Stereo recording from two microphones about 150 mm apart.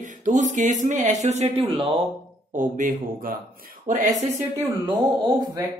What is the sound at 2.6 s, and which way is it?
Speech, 65° right (ahead or behind).